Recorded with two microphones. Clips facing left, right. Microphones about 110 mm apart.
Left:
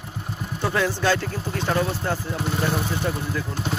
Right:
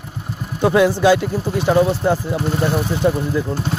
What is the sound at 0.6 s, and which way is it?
Speech, 15° right (ahead or behind).